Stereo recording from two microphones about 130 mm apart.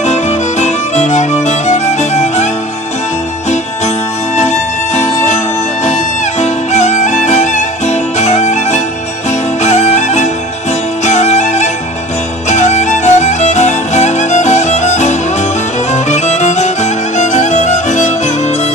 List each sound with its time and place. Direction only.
0.0 s music: 60° left (ahead or behind)
4.4 s music: 60° left (ahead or behind)
6.4 s music: 60° left (ahead or behind)